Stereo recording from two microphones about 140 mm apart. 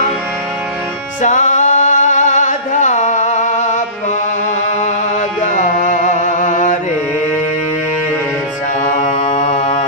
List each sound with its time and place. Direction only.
1.2 s singing: 60° left (ahead or behind)
5.4 s music: 60° left (ahead or behind)
9.0 s music: 60° left (ahead or behind)